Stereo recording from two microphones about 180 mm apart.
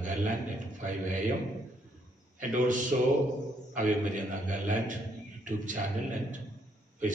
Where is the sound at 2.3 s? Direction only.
45° right (ahead or behind).